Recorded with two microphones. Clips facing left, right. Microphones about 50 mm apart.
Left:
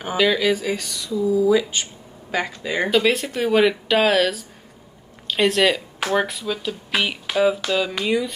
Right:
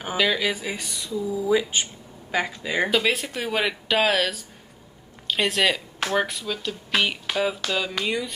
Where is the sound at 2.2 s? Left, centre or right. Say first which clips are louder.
Left 1 dB; centre.